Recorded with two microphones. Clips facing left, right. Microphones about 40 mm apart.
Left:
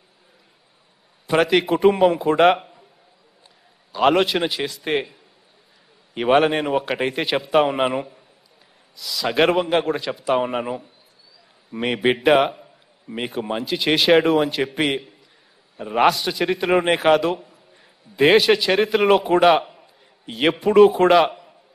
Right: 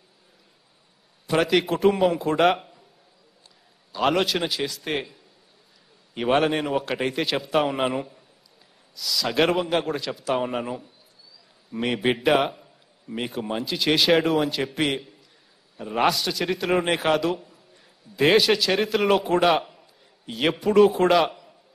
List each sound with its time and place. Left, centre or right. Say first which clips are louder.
1.4 s a man's voice: left 4 dB; centre
3.9 s a man's voice: left 5 dB; centre
12.6 s a sound: left 2 dB; centre
13.3 s a man's voice: left 5 dB; centre
14.5 s a man's voice: left 3 dB; centre
20.4 s a man's voice: left 4 dB; centre